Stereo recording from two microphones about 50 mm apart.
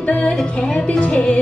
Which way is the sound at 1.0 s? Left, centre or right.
Left.